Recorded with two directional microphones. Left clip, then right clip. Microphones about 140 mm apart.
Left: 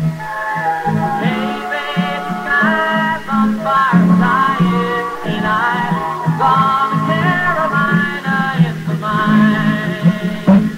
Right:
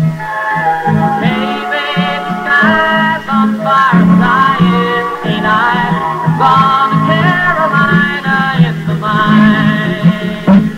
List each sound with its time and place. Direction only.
0.8 s music: 30° left (ahead or behind)
2.5 s music: 30° left (ahead or behind)